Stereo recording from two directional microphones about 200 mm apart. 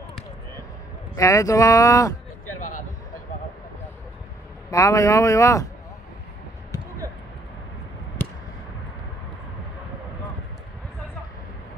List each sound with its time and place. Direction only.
1.1 s speech: 15° left (ahead or behind)
4.6 s speech: 15° left (ahead or behind)